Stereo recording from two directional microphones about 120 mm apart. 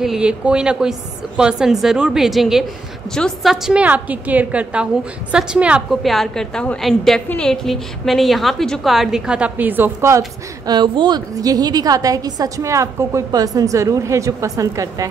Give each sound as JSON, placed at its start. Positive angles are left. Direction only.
{"t": 0.0, "sound": "a woman's voice", "side_deg": -5}
{"t": 10.7, "sound": "a woman's voice", "side_deg": -40}